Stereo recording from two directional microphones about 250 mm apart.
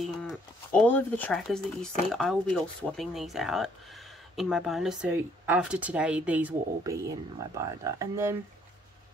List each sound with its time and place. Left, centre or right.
0.0 s speech: centre